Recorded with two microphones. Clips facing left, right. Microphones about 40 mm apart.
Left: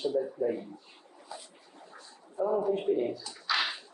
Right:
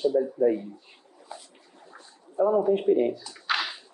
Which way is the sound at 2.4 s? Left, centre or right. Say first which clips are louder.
Right 6 dB; right.